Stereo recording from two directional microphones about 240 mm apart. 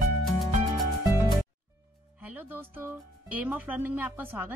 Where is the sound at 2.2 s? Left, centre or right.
Centre.